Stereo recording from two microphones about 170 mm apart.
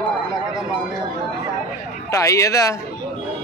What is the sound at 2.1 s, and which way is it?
Speech, 20° left (ahead or behind).